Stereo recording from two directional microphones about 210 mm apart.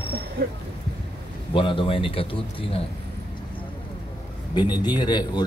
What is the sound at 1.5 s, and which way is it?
A man's voice, 25° left (ahead or behind).